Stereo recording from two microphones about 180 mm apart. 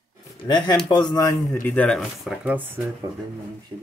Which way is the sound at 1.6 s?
5° left (ahead or behind).